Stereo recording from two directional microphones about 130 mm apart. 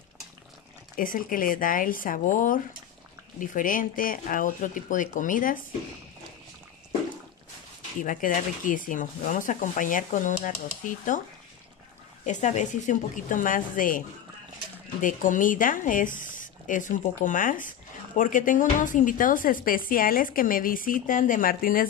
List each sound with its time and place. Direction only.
0.9 s speech: 90° left
8.0 s speech: 90° left
12.3 s speech: 65° left (ahead or behind); by 21.8 s 90° left